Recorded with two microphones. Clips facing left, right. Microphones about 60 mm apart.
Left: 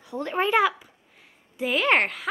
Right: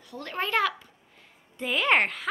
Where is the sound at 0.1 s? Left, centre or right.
Centre.